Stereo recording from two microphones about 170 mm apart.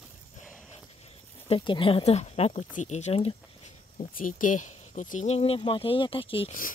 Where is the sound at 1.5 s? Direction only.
30° left (ahead or behind).